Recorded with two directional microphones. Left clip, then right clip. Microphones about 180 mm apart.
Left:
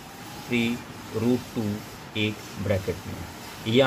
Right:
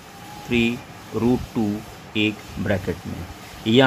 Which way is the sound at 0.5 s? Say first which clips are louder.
Right 5 dB; 50° right (ahead or behind).